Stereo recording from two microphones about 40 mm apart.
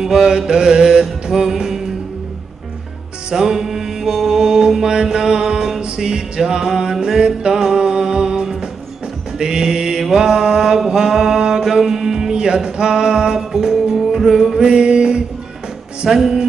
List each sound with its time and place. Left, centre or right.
0.0 s mantra: centre
3.3 s music: centre
5.4 s a sound: centre
5.9 s music: centre
10.1 s mantra: centre
14.6 s music: right
16.1 s mantra: centre